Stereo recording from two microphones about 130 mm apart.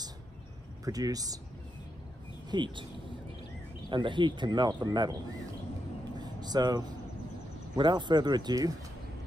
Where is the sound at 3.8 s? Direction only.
35° right (ahead or behind).